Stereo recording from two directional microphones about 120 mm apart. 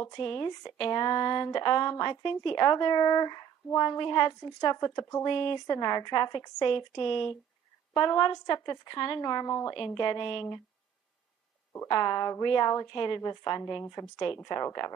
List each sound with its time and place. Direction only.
0.0 s speech: 15° left (ahead or behind)
0.3 s speech: 30° left (ahead or behind); by 7.2 s 45° left (ahead or behind)
7.9 s speech: 35° left (ahead or behind)
11.9 s speech: 35° left (ahead or behind)